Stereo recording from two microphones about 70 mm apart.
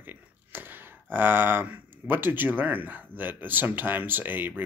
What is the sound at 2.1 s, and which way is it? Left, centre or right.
Speech, right.